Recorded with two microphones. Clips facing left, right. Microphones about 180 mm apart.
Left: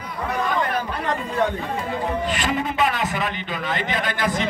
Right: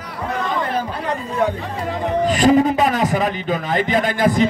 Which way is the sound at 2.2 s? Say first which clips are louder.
Right 10 dB; 40° right (ahead or behind).